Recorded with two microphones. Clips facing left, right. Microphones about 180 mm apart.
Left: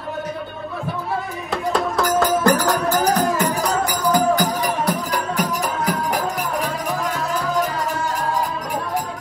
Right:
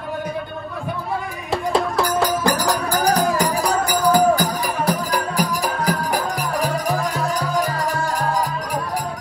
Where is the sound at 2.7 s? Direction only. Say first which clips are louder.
Left 1 dB; centre (ahead or behind).